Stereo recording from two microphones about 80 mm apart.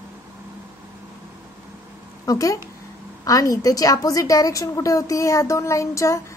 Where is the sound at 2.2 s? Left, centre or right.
Left.